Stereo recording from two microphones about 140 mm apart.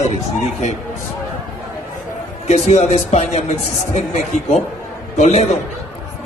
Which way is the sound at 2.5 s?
50° left (ahead or behind).